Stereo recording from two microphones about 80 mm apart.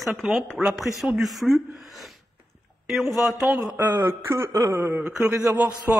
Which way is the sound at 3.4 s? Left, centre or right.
Right.